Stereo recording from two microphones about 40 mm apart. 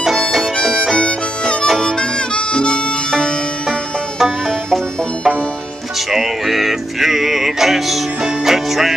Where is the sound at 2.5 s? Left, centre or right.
Left.